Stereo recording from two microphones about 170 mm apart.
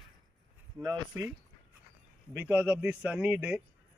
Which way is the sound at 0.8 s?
25° right (ahead or behind).